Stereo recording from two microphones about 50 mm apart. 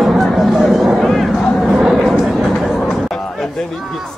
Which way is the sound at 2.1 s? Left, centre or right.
Centre.